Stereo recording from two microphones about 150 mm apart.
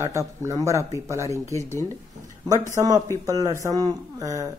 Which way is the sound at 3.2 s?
25° right (ahead or behind).